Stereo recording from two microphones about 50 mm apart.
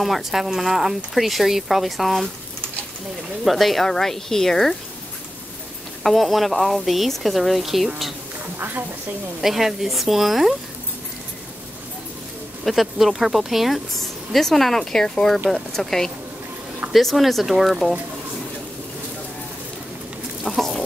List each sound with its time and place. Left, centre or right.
0.0 s speech: centre
3.4 s speech: centre
6.0 s speech: centre
8.5 s a woman's voice: right
9.4 s speech: centre
12.6 s speech: centre
20.4 s speech: centre